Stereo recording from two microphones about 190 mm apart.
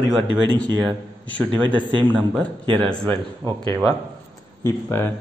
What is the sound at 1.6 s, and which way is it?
Speech, 25° right (ahead or behind).